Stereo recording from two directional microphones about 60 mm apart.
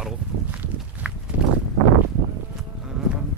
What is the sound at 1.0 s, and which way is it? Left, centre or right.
Horse, right.